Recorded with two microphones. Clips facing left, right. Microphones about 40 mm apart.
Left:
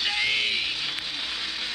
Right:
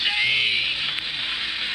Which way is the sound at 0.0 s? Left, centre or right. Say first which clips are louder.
Right 4 dB; centre.